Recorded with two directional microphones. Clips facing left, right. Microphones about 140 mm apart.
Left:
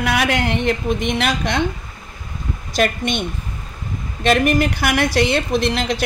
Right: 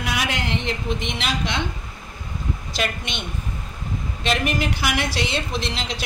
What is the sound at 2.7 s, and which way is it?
A woman's voice, 50° left (ahead or behind).